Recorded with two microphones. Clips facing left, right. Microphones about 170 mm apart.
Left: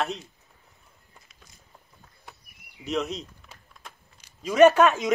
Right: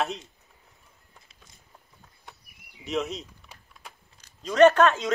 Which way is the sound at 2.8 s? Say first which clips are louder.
Left 1 dB; centre (ahead or behind).